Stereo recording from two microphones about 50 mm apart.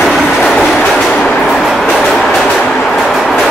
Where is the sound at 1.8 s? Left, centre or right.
Centre.